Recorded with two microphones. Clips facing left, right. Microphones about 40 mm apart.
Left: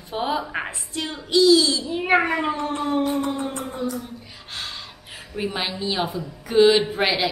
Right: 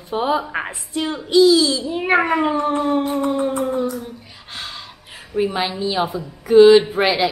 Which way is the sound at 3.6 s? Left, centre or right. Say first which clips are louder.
Right 8 dB; centre.